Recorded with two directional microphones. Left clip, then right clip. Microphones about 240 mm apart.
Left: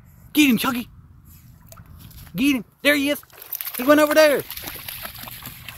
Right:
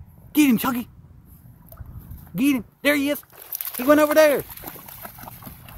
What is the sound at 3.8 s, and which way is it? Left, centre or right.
Speech, centre.